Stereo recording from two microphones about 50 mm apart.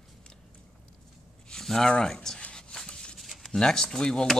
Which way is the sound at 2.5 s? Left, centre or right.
Centre.